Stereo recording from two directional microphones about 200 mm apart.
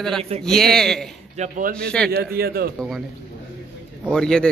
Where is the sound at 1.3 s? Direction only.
35° right (ahead or behind).